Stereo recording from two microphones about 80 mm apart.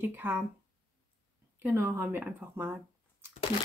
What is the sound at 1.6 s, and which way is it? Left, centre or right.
Speech, right.